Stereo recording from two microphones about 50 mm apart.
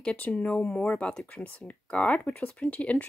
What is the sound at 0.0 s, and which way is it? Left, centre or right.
Speech, left.